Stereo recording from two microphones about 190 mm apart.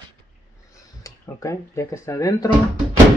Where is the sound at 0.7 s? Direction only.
15° left (ahead or behind).